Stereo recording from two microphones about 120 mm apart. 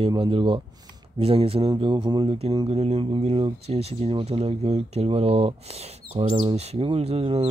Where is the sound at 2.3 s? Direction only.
50° right (ahead or behind).